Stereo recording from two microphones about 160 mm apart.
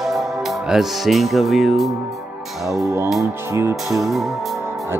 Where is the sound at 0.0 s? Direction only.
Centre (ahead or behind).